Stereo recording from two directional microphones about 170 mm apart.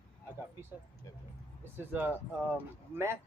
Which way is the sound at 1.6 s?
15° right (ahead or behind).